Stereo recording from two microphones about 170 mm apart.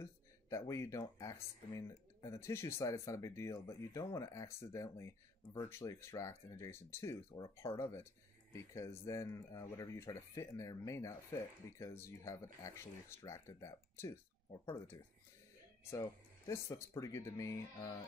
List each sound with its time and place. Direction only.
0.0 s speech: 20° left (ahead or behind)